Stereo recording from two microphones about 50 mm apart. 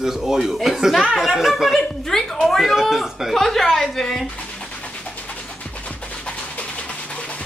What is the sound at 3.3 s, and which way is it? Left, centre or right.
Speech, centre.